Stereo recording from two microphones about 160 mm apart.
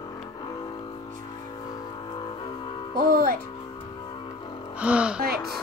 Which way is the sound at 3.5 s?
30° left (ahead or behind).